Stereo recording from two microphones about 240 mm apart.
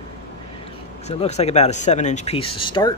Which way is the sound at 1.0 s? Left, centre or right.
Left.